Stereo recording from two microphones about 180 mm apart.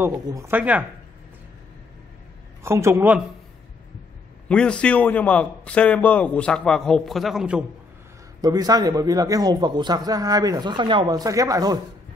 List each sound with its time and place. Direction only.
0.0 s speech: 15° right (ahead or behind)
2.6 s speech: 15° right (ahead or behind)
4.5 s a man's voice: 5° left (ahead or behind)
8.4 s a man's voice: 20° right (ahead or behind)